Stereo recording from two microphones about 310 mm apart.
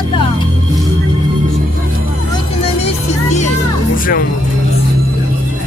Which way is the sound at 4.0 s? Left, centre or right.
Left.